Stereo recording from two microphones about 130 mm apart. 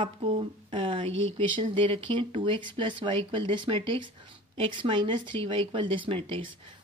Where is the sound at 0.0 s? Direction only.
45° right (ahead or behind).